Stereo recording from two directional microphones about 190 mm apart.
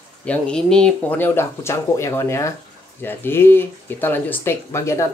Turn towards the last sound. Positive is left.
turn(degrees=15)  # may be behind; listen again after turning